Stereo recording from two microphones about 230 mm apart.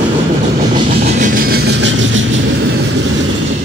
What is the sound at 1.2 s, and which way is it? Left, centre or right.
Vehicle, right.